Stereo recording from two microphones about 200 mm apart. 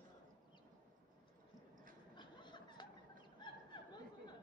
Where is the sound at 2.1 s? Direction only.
25° left (ahead or behind).